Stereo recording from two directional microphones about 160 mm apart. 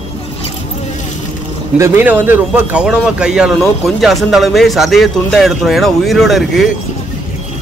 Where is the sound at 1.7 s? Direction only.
15° right (ahead or behind).